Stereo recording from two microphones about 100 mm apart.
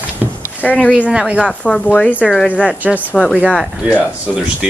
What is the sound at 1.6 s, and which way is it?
Speech, 10° left (ahead or behind).